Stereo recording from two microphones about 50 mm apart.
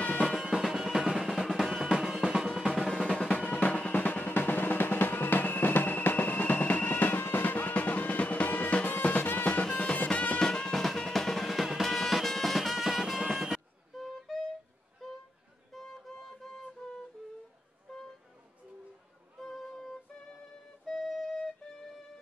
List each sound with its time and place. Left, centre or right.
0.2 s music: centre
1.9 s music: centre
2.5 s drum: centre
3.3 s music: left
9.4 s music: centre
10.4 s music: centre
15.7 s music: centre
19.4 s music: centre
20.8 s flute: centre